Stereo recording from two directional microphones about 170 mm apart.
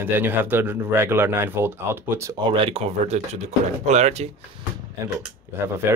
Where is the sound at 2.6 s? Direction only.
35° right (ahead or behind).